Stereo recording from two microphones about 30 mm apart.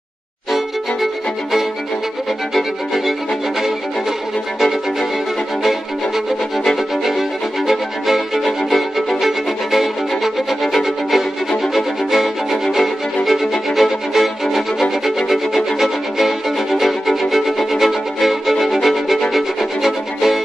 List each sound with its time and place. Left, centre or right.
2.5 s music: centre
5.6 s music: centre